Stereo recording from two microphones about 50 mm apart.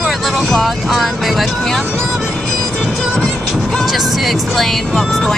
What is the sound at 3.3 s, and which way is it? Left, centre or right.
A woman's voice, centre.